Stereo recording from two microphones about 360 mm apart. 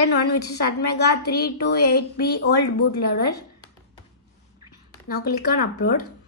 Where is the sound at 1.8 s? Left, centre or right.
Left.